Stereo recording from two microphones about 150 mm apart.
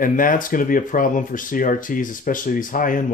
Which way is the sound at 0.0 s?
65° left (ahead or behind).